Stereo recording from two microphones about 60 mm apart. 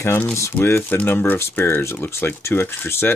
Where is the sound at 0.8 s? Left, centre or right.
Left.